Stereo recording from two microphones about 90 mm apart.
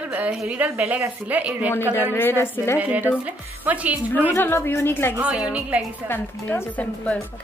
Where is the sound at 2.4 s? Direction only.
25° left (ahead or behind).